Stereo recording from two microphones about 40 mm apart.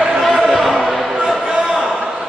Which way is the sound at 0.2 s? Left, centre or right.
Centre.